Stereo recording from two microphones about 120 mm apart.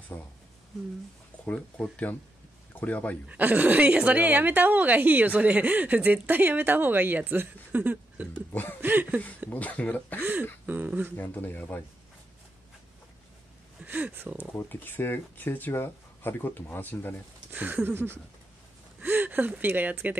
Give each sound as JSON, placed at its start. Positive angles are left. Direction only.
{"t": 1.4, "sound": "speech", "side_deg": 10}
{"t": 3.3, "sound": "a woman's voice", "side_deg": -15}
{"t": 9.5, "sound": "speech", "side_deg": 10}
{"t": 10.7, "sound": "a woman's voice", "side_deg": -15}
{"t": 11.1, "sound": "speech", "side_deg": 15}
{"t": 13.8, "sound": "a woman's voice", "side_deg": -15}
{"t": 14.5, "sound": "speech", "side_deg": 15}
{"t": 17.5, "sound": "a woman's voice", "side_deg": -15}